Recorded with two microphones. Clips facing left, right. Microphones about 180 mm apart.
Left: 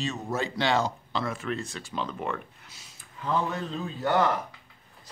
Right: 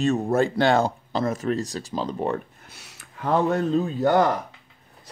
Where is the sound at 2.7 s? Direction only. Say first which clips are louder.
Right 4 dB; 70° right (ahead or behind); by 4.3 s 40° right (ahead or behind).